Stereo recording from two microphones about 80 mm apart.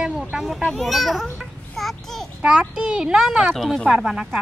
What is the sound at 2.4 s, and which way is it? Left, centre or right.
Speech, centre.